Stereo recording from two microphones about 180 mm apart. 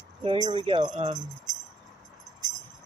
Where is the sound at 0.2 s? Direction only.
30° right (ahead or behind).